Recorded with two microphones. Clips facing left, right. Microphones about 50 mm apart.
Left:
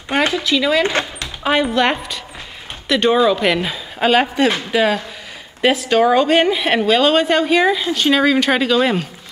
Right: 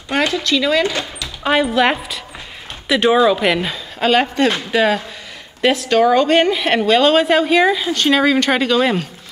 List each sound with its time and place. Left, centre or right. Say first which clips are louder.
0.3 s speech: even; centre
0.8 s speech: left 2 dB; left
1.4 s a woman's voice: right 1 dB; centre